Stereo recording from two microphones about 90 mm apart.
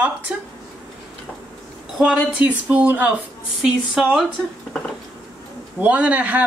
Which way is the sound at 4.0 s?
5° right (ahead or behind).